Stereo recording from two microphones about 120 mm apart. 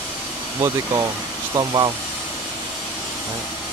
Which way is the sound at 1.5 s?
35° right (ahead or behind).